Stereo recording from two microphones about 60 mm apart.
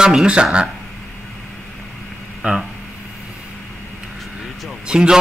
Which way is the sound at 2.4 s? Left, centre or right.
Right.